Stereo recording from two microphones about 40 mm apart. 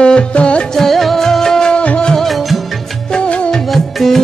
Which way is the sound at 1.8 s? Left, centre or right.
Left.